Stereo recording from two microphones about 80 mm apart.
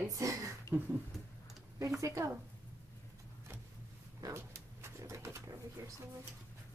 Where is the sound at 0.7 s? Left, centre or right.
Right.